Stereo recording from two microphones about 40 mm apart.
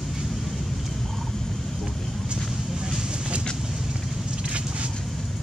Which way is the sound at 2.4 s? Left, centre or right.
Centre.